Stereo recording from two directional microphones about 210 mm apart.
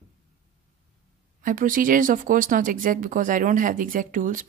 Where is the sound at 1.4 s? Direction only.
40° right (ahead or behind).